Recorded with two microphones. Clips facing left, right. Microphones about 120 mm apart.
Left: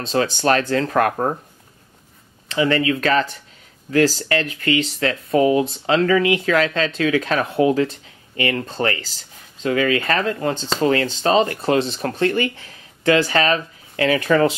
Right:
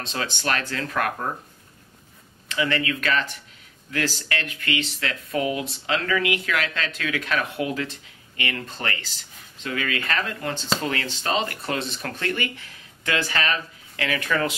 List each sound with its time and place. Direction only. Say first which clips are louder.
0.0 s speech: left 10 dB; 35° left (ahead or behind)
2.4 s speech: left 7 dB; 30° left (ahead or behind)